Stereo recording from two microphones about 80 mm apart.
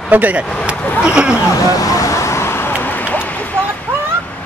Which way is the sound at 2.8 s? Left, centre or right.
Left.